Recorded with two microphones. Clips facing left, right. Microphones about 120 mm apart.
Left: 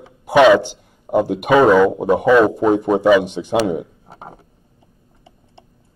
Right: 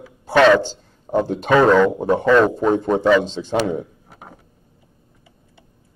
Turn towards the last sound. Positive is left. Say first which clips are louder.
# left 5 dB
turn(degrees=30)  # may be behind; listen again after turning